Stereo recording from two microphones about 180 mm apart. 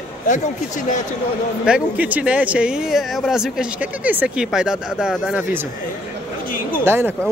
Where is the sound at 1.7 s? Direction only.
10° right (ahead or behind).